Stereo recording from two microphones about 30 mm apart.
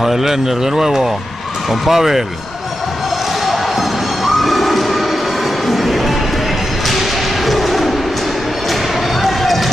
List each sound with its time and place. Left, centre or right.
0.0 s speech: centre
4.2 s a sound: centre
5.7 s music: centre
6.9 s thump: centre
9.2 s run: centre